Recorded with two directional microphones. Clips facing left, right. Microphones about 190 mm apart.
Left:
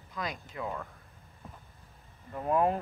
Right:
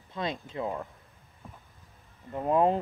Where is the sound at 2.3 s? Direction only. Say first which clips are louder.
Right 3 dB; 25° right (ahead or behind).